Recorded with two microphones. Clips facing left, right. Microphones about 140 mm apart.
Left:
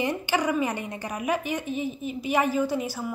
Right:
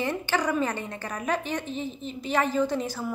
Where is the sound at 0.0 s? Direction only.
15° left (ahead or behind).